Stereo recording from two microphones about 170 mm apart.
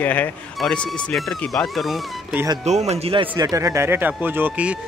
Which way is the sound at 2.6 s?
40° right (ahead or behind).